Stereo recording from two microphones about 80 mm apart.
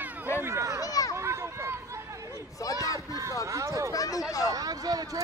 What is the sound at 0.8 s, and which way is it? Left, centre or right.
Speech, left.